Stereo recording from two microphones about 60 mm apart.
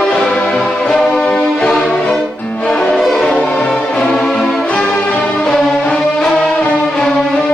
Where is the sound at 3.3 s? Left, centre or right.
Left; by 4.7 s centre.